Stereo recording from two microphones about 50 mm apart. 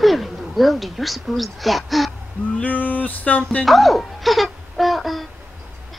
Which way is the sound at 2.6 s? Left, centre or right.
Left.